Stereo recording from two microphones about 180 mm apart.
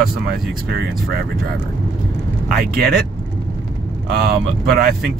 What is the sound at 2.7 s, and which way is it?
Speech, 60° right (ahead or behind).